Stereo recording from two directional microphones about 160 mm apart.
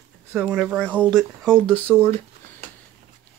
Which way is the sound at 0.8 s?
10° left (ahead or behind).